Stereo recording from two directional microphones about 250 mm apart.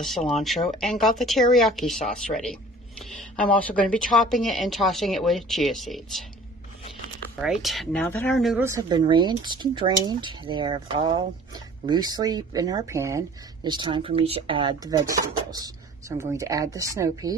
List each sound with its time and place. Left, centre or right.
0.3 s speech: centre
7.6 s speech: centre